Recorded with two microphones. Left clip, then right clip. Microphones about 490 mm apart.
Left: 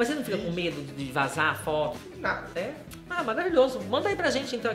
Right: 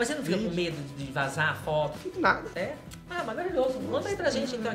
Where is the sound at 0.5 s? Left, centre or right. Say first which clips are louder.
Left 1 dB; left.